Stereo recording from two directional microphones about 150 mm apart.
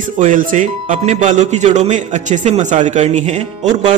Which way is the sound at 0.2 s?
60° right (ahead or behind).